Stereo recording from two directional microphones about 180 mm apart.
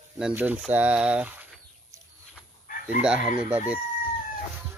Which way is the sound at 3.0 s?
5° right (ahead or behind).